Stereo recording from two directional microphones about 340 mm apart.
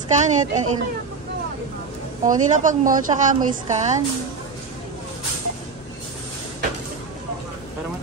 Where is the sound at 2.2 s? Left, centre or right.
Right.